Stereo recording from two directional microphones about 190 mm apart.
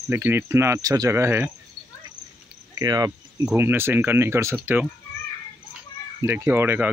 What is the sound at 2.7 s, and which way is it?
Speech, 20° right (ahead or behind).